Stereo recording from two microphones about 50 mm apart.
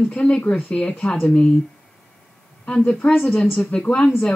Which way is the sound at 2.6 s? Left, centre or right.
Left.